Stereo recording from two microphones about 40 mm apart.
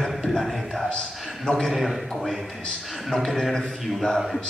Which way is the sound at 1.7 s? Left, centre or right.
Centre.